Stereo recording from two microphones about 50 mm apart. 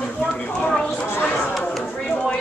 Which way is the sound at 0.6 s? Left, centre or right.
Centre.